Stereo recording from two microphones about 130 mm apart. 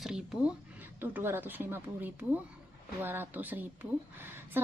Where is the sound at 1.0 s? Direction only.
15° right (ahead or behind).